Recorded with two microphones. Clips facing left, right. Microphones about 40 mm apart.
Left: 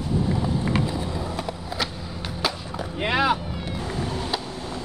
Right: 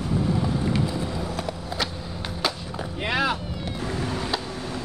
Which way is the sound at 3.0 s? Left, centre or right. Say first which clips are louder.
Left 3 dB; centre.